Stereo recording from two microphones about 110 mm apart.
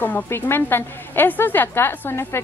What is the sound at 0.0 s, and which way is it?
A woman's voice, 20° left (ahead or behind).